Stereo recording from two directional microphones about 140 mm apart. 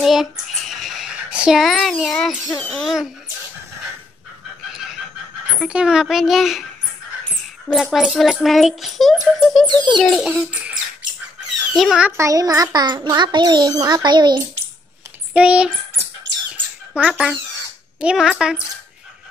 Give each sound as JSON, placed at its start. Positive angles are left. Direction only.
{"t": 0.0, "sound": "a sound", "side_deg": 0}
{"t": 2.5, "sound": "a child's voice", "side_deg": 5}
{"t": 5.6, "sound": "a child's voice", "side_deg": -5}
{"t": 7.6, "sound": "a child's voice", "side_deg": 0}
{"t": 12.2, "sound": "a child's voice", "side_deg": -25}
{"t": 15.3, "sound": "speech", "side_deg": -5}
{"t": 16.9, "sound": "a child's voice", "side_deg": -5}